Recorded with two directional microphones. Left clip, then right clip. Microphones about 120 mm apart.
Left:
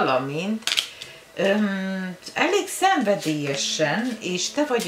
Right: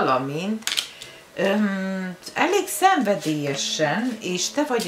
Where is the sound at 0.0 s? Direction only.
20° right (ahead or behind).